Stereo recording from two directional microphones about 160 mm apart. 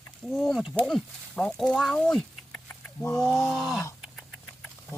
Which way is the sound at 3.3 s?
Centre (ahead or behind).